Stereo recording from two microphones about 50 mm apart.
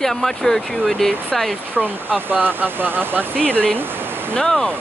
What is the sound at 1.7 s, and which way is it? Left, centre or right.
Speech, right.